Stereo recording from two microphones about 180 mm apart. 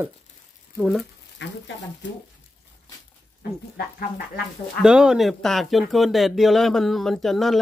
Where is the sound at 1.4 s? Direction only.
80° left.